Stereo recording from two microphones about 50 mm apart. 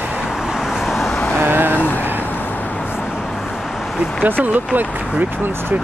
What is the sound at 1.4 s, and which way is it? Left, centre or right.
Vehicle, right.